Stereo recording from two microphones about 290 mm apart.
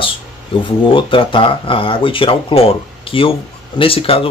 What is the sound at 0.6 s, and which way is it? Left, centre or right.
Speech, centre.